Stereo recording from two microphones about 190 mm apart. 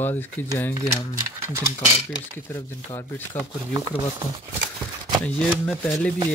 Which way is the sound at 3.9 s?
30° left (ahead or behind).